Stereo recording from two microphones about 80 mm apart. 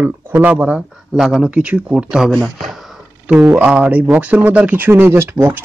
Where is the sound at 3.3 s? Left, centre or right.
Centre.